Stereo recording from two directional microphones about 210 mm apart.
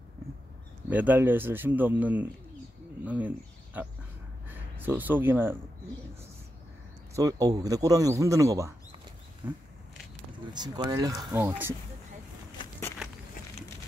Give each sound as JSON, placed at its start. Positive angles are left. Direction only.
{"t": 0.8, "sound": "speech", "side_deg": -5}
{"t": 7.2, "sound": "speech", "side_deg": -15}
{"t": 10.5, "sound": "speech", "side_deg": -20}